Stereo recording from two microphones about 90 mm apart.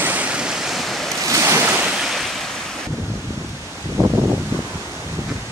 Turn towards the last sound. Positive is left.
turn(degrees=-35)  # may be behind; listen again after turning